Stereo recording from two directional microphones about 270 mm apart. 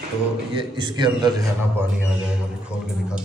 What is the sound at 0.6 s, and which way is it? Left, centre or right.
Speech, centre.